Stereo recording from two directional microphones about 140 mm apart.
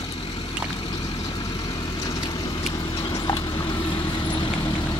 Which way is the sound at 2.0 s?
25° left (ahead or behind).